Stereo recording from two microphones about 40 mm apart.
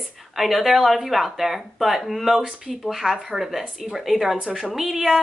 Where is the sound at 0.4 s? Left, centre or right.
Centre.